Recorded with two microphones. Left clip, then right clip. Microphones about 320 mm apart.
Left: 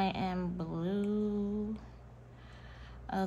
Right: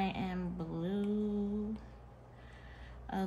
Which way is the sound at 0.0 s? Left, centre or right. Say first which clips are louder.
Left 4 dB; centre.